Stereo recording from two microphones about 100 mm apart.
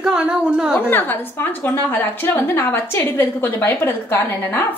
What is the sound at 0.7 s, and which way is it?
A woman's voice, 20° left (ahead or behind).